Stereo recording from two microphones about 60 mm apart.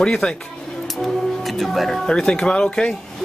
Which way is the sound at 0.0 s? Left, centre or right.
Centre.